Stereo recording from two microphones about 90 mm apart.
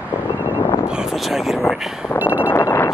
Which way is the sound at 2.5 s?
30° left (ahead or behind).